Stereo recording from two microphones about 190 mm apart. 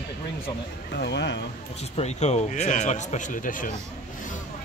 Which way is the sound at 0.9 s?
65° left (ahead or behind).